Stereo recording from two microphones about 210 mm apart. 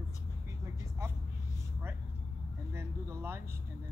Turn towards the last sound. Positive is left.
turn(degrees=-10)  # may be behind; listen again after turning